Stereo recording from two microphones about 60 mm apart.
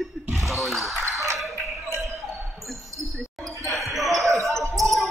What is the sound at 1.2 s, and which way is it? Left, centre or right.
Ping, centre.